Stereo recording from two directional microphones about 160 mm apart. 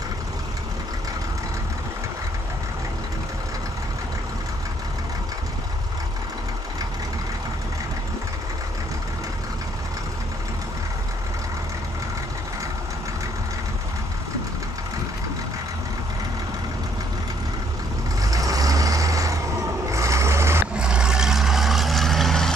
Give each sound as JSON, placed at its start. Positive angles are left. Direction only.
{"t": 18.2, "sound": "vehicle", "side_deg": -20}
{"t": 20.7, "sound": "vehicle", "side_deg": -5}